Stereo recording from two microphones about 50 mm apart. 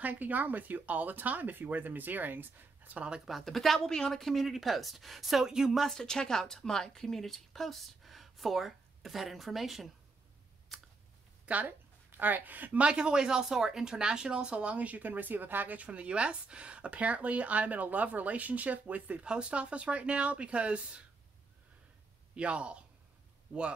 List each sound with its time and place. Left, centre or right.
0.0 s speech: right
3.3 s speech: centre
5.8 s speech: centre
10.7 s a sound: centre
11.4 s speech: right
22.3 s speech: right